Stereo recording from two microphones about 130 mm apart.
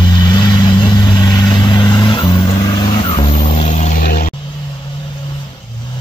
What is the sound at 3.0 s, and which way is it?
Vehicle, 55° left (ahead or behind).